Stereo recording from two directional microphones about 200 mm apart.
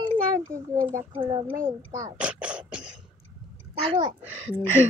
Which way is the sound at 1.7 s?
15° right (ahead or behind).